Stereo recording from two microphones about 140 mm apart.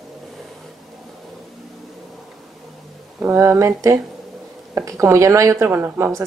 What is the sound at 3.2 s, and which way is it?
Speech, 20° right (ahead or behind).